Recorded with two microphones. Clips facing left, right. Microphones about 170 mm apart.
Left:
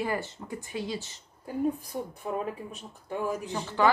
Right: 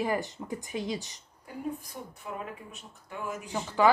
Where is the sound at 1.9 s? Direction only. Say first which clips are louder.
Left 7 dB; 35° left (ahead or behind).